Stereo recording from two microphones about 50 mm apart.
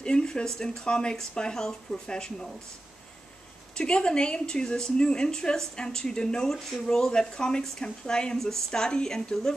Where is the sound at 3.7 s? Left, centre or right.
Centre.